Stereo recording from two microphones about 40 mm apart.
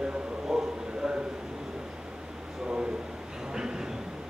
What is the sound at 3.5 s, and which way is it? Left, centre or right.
Train, centre.